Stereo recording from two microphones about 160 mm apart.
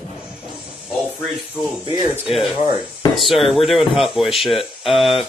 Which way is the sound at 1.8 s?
25° right (ahead or behind).